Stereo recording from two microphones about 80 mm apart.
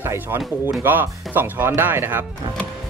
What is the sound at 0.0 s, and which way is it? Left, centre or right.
Speech, right.